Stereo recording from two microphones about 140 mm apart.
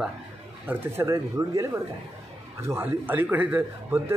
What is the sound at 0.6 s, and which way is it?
A man's voice, 15° right (ahead or behind).